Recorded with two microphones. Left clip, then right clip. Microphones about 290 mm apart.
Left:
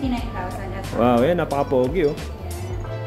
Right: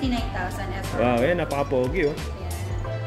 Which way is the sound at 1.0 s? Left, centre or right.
Centre.